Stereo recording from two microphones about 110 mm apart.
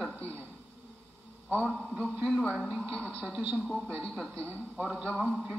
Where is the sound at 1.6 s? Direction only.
5° left (ahead or behind).